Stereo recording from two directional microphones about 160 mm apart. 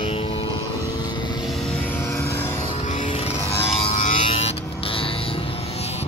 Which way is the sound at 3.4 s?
40° left (ahead or behind).